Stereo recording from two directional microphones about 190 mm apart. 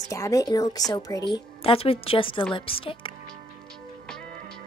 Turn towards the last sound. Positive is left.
turn(degrees=25)  # may be behind; listen again after turning